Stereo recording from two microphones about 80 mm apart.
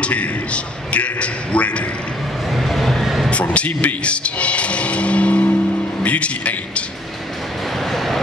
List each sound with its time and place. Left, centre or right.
0.0 s speech: centre
2.5 s vehicle: centre
3.3 s speech: centre
7.9 s vehicle: centre